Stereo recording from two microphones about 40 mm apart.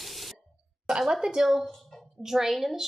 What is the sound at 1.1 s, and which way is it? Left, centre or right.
A woman's voice, centre.